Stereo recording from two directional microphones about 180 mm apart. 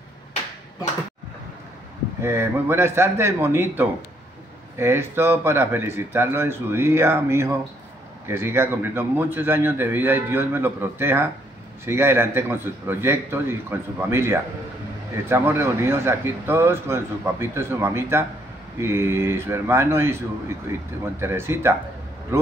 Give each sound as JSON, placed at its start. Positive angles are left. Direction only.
{"t": 2.2, "sound": "speech", "side_deg": -15}